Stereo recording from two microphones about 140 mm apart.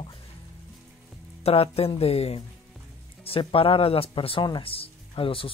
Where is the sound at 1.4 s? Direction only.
45° left (ahead or behind).